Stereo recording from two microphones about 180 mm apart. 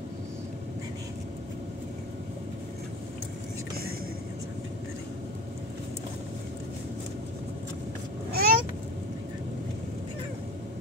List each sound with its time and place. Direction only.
8.3 s vehicle: 55° right (ahead or behind)